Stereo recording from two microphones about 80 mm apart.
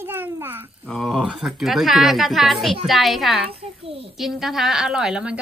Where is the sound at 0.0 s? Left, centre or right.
Right.